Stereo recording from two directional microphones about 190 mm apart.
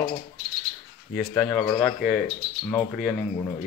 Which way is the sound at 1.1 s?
5° left (ahead or behind).